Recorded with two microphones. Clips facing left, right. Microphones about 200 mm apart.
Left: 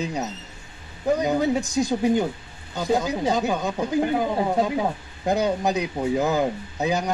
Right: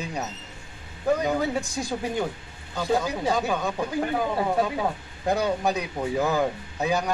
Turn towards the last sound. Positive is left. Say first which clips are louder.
# left 1 dB
turn(degrees=20)  # may be behind; listen again after turning